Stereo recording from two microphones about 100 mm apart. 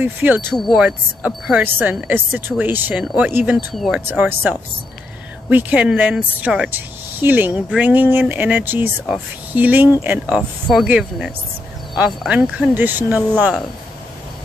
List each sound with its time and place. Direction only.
0.0 s speech: 20° right (ahead or behind)
0.5 s speech: centre (ahead or behind)
0.8 s speech: 15° right (ahead or behind)
3.5 s speech: centre (ahead or behind)
3.9 s speech: 20° right (ahead or behind)